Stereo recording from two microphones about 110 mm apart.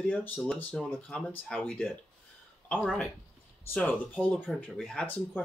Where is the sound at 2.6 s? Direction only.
10° left (ahead or behind).